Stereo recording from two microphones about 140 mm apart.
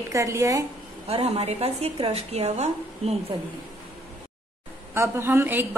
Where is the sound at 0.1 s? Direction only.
20° right (ahead or behind).